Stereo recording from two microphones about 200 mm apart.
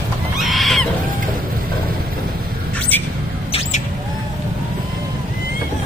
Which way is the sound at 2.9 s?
10° left (ahead or behind).